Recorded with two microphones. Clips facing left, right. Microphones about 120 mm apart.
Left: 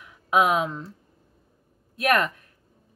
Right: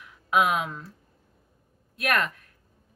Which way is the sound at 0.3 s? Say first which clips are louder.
Left 3 dB; 25° left (ahead or behind).